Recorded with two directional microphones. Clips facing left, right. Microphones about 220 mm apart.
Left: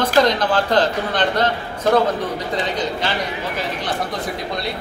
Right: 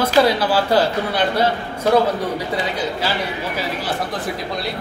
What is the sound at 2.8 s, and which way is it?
A man's voice, 5° right (ahead or behind).